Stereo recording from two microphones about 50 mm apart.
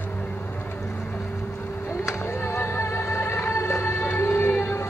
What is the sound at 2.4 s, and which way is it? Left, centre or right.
Music, left.